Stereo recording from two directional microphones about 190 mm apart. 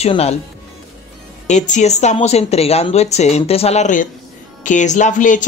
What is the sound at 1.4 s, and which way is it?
Speech, 40° left (ahead or behind).